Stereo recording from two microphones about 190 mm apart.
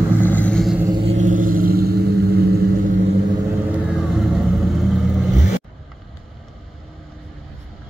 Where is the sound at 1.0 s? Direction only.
40° right (ahead or behind).